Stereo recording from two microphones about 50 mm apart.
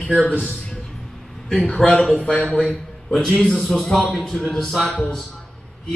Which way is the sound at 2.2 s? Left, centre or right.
Left.